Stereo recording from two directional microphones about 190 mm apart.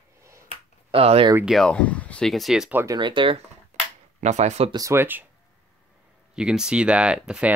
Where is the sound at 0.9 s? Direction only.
30° right (ahead or behind).